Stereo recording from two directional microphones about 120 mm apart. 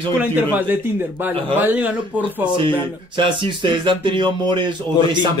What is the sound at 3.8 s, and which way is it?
A man's voice, 40° right (ahead or behind).